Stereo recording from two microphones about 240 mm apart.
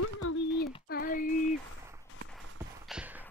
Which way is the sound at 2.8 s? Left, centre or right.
Centre.